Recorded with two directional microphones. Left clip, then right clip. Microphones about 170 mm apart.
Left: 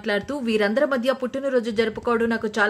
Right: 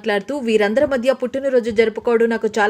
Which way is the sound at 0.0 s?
10° right (ahead or behind).